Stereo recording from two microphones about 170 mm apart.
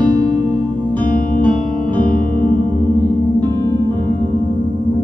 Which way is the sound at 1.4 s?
30° right (ahead or behind).